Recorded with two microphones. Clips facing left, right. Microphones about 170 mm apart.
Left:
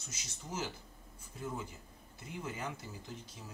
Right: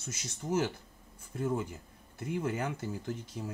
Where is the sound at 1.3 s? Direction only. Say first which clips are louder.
Right 9 dB; 60° right (ahead or behind).